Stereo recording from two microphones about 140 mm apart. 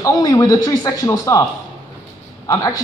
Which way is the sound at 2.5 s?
25° left (ahead or behind).